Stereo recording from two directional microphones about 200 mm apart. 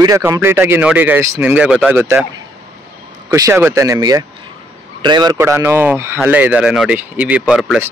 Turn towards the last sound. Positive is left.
turn(degrees=0)  # may be behind; listen again after turning